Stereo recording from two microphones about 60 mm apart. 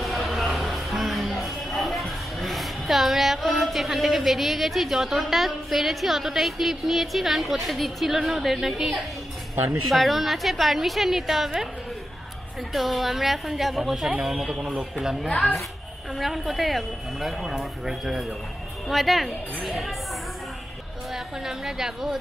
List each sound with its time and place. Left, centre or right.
0.0 s music: centre
9.8 s speech: centre
12.7 s speech: centre
16.2 s speech: centre
21.1 s a woman's voice: centre